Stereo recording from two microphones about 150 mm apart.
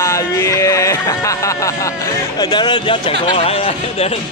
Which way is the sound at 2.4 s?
30° left (ahead or behind).